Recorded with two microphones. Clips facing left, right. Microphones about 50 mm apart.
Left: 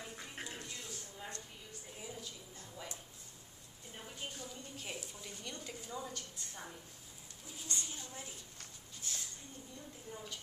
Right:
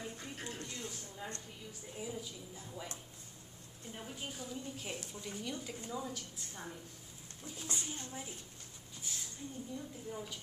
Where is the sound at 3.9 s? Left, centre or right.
Centre.